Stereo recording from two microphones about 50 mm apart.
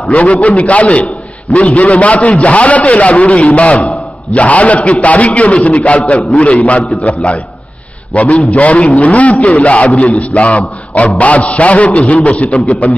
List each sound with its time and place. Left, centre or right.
0.1 s a man's voice: left